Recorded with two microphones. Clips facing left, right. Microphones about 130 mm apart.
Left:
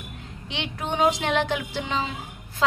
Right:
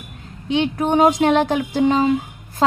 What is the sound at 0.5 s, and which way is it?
A woman's voice, 45° right (ahead or behind).